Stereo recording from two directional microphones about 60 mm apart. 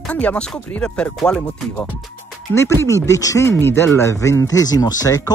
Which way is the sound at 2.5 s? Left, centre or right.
Left.